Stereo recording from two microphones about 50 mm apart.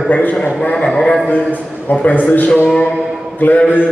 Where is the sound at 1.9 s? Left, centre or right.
Left.